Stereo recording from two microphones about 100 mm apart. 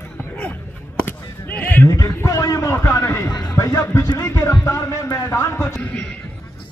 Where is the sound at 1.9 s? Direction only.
30° left (ahead or behind).